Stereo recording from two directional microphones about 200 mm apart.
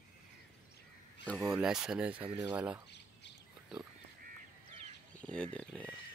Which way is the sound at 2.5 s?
5° right (ahead or behind).